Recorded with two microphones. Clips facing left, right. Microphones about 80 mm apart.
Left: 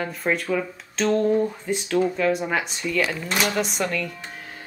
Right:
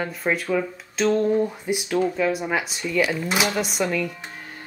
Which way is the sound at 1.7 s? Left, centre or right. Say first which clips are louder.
Even; centre.